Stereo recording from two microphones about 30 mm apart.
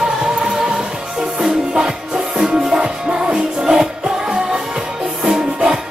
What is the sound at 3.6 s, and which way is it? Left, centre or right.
Music, right.